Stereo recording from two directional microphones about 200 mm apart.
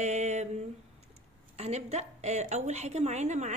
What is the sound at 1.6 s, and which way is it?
Speech, 35° right (ahead or behind).